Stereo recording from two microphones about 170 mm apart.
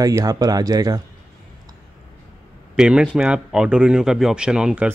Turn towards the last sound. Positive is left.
turn(degrees=-5)  # may be behind; listen again after turning